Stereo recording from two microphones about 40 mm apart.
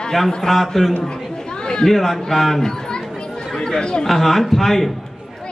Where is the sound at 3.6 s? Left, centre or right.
Centre.